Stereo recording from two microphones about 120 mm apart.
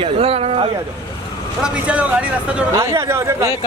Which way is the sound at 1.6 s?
10° right (ahead or behind).